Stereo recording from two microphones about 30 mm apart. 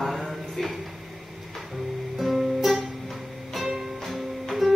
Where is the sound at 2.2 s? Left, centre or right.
Centre.